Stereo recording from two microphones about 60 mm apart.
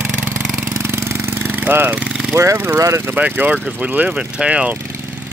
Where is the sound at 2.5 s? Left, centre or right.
Right.